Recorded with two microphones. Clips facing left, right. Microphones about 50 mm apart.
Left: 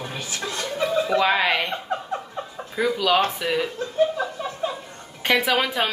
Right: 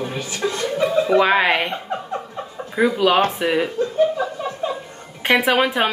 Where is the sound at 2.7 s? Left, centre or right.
Right.